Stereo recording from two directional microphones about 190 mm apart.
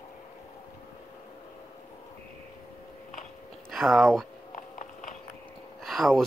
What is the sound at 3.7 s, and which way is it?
Speech, centre (ahead or behind).